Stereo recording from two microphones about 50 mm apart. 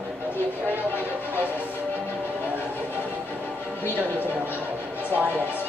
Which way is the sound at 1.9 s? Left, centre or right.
Right.